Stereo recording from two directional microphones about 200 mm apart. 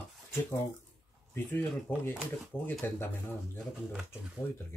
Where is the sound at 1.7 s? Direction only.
5° right (ahead or behind).